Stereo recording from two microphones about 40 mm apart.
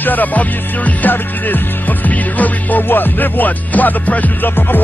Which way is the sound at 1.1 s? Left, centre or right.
Left.